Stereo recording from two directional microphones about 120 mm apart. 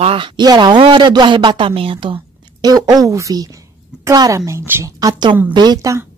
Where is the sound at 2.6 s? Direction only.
35° right (ahead or behind).